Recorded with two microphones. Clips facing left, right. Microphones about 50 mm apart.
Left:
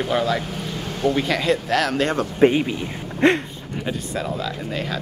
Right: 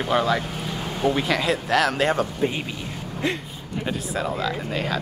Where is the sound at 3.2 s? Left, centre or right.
Left.